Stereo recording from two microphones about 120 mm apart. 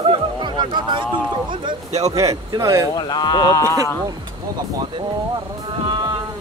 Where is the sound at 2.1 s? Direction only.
25° right (ahead or behind).